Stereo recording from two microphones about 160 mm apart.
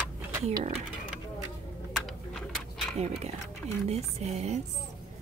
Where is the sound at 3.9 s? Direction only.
40° right (ahead or behind).